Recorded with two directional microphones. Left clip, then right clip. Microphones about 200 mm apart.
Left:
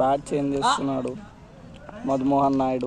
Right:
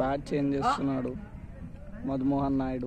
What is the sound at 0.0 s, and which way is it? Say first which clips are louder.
A man's voice: left 7 dB; 15° left (ahead or behind).